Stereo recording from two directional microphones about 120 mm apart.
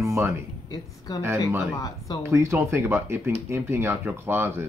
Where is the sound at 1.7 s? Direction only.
30° left (ahead or behind).